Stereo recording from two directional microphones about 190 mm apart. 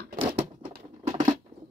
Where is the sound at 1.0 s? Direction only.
20° right (ahead or behind).